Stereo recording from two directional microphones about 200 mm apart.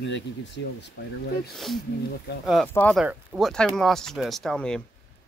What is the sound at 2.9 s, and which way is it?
Speech, 5° right (ahead or behind).